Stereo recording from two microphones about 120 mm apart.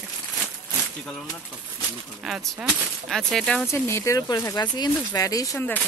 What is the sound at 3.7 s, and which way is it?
Speech, 20° left (ahead or behind).